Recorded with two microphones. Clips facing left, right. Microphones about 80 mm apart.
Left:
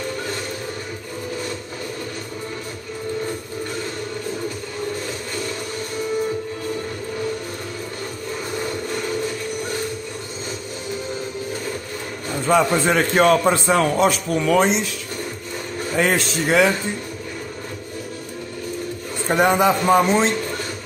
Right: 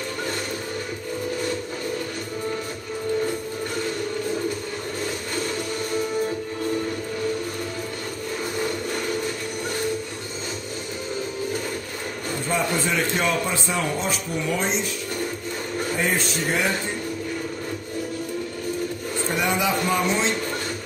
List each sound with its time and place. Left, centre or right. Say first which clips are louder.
12.4 s a man's voice: left 8 dB; left
16.0 s speech: left 7 dB; left
19.2 s a man's voice: left 8 dB; left